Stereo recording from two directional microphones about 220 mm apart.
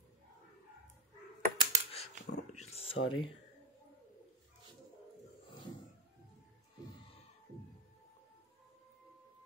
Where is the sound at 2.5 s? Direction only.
30° left (ahead or behind).